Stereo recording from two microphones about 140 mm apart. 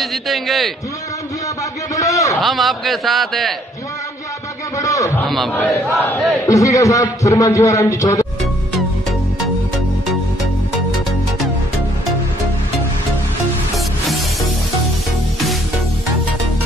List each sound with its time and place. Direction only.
0.0 s a sound: centre (ahead or behind)
2.0 s a sound: 25° left (ahead or behind)
2.3 s a man's voice: centre (ahead or behind)
4.7 s a man's voice: 25° left (ahead or behind)
5.5 s battle cry: 10° left (ahead or behind)
6.4 s a man's voice: 25° left (ahead or behind)